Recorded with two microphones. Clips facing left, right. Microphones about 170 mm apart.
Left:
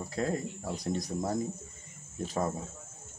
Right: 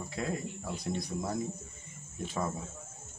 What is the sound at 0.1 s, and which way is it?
Speech, 40° left (ahead or behind).